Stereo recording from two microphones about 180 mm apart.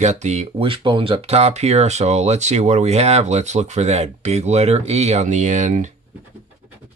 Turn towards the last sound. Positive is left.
turn(degrees=-45)  # may be behind; listen again after turning